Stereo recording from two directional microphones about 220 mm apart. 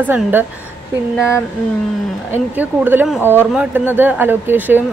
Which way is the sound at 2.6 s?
10° right (ahead or behind).